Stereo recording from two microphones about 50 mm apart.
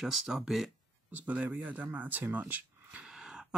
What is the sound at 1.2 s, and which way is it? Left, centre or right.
Speech, right.